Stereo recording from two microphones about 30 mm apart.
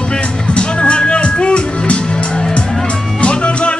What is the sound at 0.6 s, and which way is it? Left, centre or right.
Music, left.